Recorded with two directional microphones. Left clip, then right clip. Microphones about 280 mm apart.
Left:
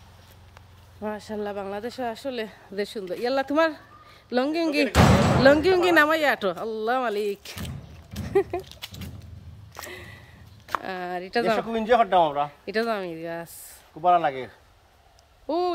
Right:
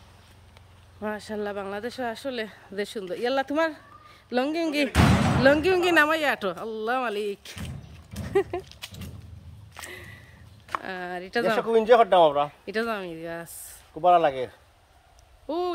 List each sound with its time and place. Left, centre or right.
1.0 s speech: centre
8.1 s dog: centre
8.8 s a sound: centre
10.8 s speech: centre
11.5 s a man's voice: centre
12.6 s speech: centre
14.0 s a man's voice: right
15.4 s speech: centre